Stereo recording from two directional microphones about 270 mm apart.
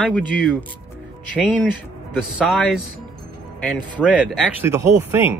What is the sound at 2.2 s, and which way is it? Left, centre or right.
Speech, centre.